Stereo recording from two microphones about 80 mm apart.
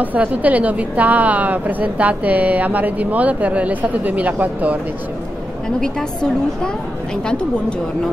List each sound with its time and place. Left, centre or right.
0.0 s a woman's voice: centre
5.8 s a woman's voice: centre